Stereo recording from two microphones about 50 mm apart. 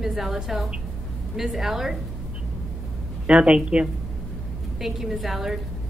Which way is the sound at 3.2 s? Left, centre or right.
Right.